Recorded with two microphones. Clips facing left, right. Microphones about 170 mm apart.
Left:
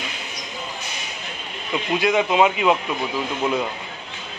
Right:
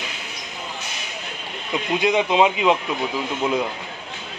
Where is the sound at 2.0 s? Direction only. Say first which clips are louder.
Even; 20° right (ahead or behind).